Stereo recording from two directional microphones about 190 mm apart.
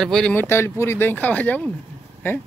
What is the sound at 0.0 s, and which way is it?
Speech, 5° left (ahead or behind).